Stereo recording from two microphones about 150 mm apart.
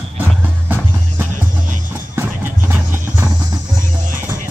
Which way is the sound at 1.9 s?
15° right (ahead or behind).